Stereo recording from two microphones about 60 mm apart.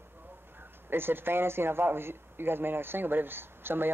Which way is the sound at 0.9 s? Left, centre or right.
Right.